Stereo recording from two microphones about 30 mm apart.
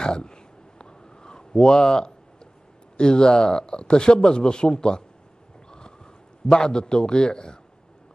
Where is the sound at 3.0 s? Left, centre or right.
Left.